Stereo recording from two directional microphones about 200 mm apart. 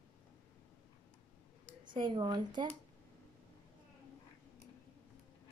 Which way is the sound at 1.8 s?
25° right (ahead or behind).